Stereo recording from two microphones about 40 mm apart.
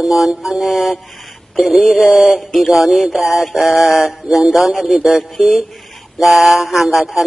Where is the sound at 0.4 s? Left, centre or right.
Centre.